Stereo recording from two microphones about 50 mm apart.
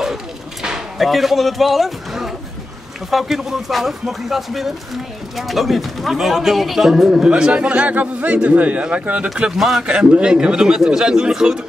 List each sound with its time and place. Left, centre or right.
0.0 s bird: centre
0.9 s a man's voice: centre
7.2 s a man's voice: right
9.3 s speech: centre
9.8 s speech: centre